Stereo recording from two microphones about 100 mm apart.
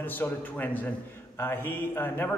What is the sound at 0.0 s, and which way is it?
A man's voice, 20° left (ahead or behind).